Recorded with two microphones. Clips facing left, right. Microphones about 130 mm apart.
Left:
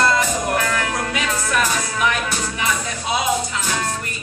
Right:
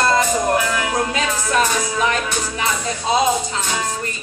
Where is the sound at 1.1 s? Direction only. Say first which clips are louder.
Right 2 dB; 30° right (ahead or behind).